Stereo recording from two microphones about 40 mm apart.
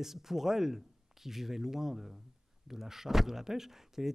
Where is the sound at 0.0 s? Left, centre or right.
Centre.